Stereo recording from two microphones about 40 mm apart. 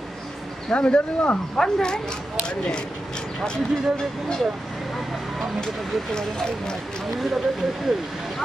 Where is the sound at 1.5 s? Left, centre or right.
Centre.